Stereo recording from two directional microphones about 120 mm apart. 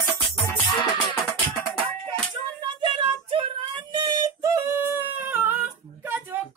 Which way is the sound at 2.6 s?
45° right (ahead or behind).